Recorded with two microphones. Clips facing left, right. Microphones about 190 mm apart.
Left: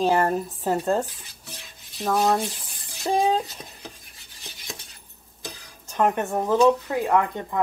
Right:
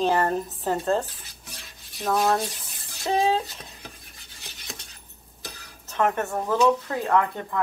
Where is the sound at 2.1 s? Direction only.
15° left (ahead or behind).